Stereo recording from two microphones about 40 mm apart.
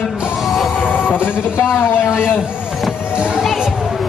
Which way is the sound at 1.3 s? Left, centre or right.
Right.